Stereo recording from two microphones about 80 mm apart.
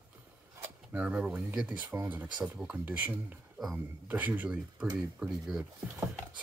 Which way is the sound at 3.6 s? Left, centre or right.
Centre.